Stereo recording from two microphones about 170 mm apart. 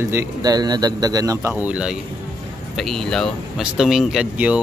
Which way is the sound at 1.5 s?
5° right (ahead or behind).